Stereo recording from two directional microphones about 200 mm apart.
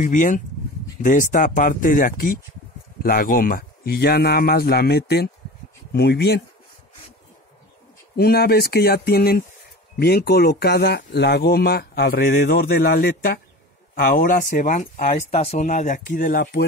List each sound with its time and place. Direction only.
0.0 s speech: 40° left (ahead or behind)
8.2 s speech: 50° left (ahead or behind)